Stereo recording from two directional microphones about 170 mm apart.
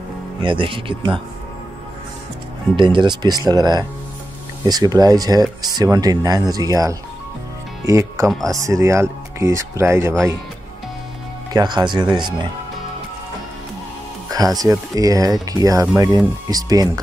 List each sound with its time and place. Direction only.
0.4 s speech: 30° right (ahead or behind)
2.7 s speech: 30° right (ahead or behind)
11.5 s speech: 25° right (ahead or behind)
14.3 s speech: 20° right (ahead or behind)